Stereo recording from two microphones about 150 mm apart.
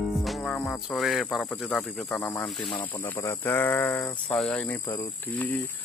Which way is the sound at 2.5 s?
10° left (ahead or behind).